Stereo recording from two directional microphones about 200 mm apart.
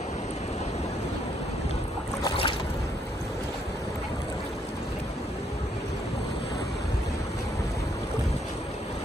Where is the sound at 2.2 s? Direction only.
25° left (ahead or behind).